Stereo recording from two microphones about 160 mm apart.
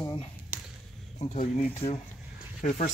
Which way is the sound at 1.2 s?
45° left (ahead or behind).